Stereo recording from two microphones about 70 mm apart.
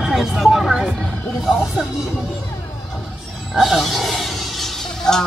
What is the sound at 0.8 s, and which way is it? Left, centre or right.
Speech, centre.